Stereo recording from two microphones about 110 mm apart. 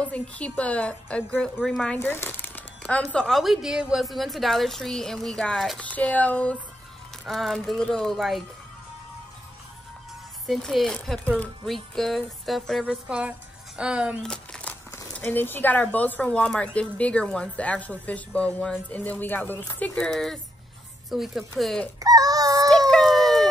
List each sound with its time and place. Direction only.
0.0 s speech: 10° left (ahead or behind)
2.0 s speech: 20° left (ahead or behind)
7.2 s speech: centre (ahead or behind)
10.4 s speech: centre (ahead or behind)
13.7 s speech: 10° right (ahead or behind)
14.2 s a sound: 5° left (ahead or behind)
15.2 s speech: 20° left (ahead or behind)
20.0 s speech: 5° left (ahead or behind)
22.0 s a sound: 35° right (ahead or behind)
22.8 s a sound: centre (ahead or behind)